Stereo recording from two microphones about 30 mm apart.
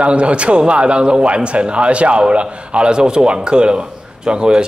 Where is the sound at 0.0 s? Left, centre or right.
Right.